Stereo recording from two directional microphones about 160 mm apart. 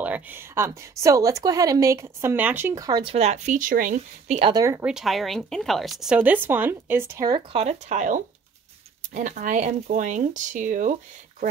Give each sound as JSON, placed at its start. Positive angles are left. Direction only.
{"t": 0.0, "sound": "a woman's voice", "side_deg": -10}
{"t": 4.5, "sound": "a woman's voice", "side_deg": -20}
{"t": 4.8, "sound": "speech", "side_deg": 0}
{"t": 7.5, "sound": "speech", "side_deg": -45}